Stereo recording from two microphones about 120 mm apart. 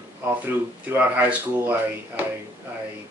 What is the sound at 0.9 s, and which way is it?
Speech, 20° right (ahead or behind).